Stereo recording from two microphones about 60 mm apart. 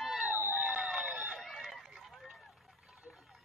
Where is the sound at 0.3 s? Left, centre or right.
Right.